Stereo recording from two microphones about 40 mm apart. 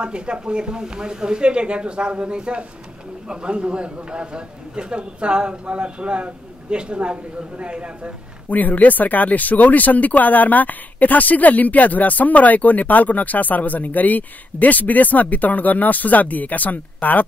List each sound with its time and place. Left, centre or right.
0.0 s a man's voice: right
8.5 s speech: left